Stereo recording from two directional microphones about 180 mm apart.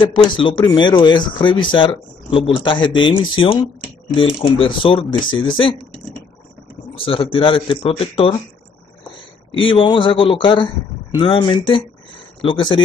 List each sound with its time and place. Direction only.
0.0 s speech: 25° left (ahead or behind)
7.0 s speech: 30° left (ahead or behind)
9.5 s speech: 30° left (ahead or behind)